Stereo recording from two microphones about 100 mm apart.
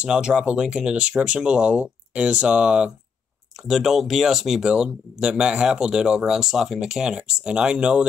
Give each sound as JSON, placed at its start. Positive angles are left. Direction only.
{"t": 0.0, "sound": "speech", "side_deg": -10}